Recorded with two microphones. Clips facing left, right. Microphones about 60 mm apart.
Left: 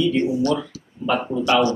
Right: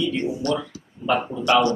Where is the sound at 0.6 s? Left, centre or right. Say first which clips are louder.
Left 3 dB; centre.